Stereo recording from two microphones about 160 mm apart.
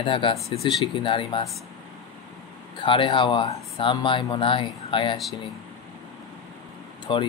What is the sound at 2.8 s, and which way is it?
Speech, 30° left (ahead or behind).